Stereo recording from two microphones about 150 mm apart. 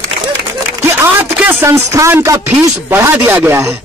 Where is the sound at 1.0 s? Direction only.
15° right (ahead or behind).